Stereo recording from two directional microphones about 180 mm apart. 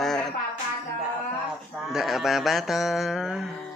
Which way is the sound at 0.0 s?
5° left (ahead or behind).